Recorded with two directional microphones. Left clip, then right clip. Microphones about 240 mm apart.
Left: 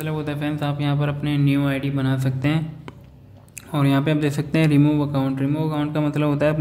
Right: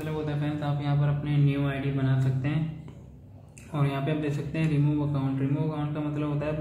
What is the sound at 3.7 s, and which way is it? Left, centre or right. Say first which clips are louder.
A man's voice: left 9 dB; left.